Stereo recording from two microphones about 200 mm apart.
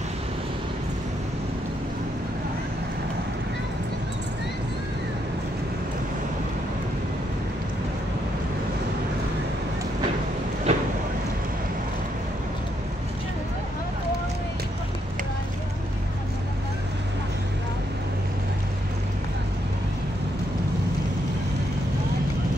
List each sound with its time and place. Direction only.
10.7 s vehicle: 30° right (ahead or behind)